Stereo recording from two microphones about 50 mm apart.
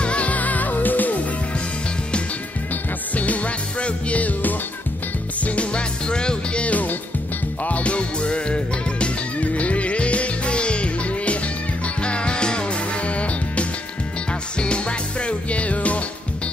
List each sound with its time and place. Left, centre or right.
0.0 s music: left
3.2 s music: left
5.4 s music: left